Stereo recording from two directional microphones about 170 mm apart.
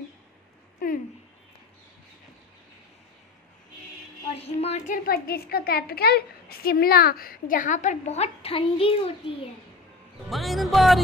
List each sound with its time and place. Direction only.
4.3 s speech: 35° left (ahead or behind)
4.8 s a child's voice: 55° left (ahead or behind); by 9.5 s 35° left (ahead or behind)
10.3 s speech: centre (ahead or behind)